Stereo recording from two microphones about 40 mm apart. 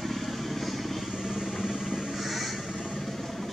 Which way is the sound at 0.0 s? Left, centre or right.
Centre.